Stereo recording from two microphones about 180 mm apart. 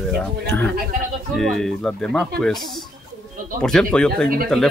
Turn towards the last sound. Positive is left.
turn(degrees=5)  # may be behind; listen again after turning